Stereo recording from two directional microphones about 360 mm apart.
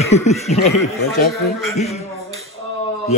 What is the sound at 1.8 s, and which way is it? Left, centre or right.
Speech, centre.